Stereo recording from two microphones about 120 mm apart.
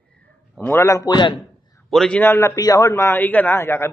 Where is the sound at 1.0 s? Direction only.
40° left (ahead or behind).